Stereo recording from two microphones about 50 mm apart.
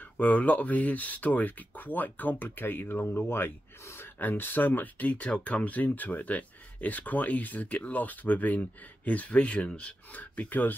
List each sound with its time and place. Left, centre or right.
0.2 s speech: left
9.3 s speech: left
10.1 s speech: left